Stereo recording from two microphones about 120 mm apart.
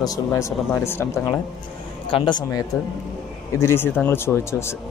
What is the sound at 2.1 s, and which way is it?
Speech, 40° left (ahead or behind).